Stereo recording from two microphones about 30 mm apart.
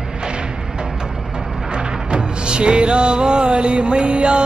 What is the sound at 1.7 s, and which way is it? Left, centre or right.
Music, right.